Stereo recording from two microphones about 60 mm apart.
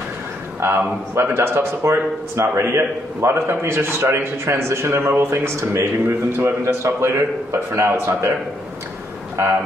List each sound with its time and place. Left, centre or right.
0.6 s a man's voice: right
6.0 s a man's voice: right
9.4 s a man's voice: right